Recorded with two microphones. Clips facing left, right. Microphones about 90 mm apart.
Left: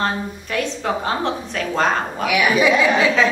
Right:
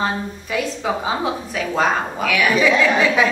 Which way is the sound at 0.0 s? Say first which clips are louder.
Even; 5° right (ahead or behind).